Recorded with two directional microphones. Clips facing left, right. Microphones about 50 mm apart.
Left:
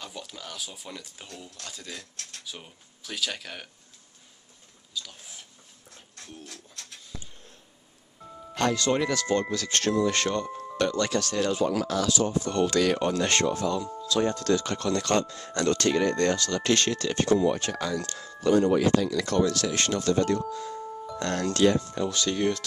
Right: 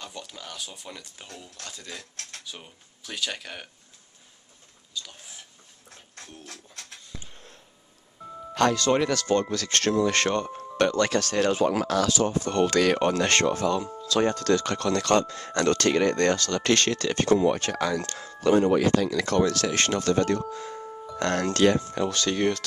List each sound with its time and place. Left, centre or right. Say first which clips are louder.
0.0 s speech: even; centre
4.9 s speech: even; centre
6.4 s a sound: right 1 dB; right
8.5 s speech: right 3 dB; right
18.7 s speech: right 1 dB; right